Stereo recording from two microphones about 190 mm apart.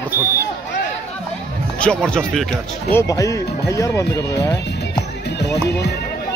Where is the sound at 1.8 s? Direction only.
5° left (ahead or behind).